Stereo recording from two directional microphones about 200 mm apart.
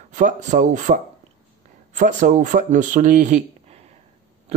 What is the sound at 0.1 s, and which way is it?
A man's voice, 40° right (ahead or behind).